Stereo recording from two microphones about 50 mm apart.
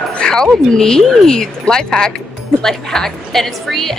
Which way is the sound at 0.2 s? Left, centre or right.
Centre.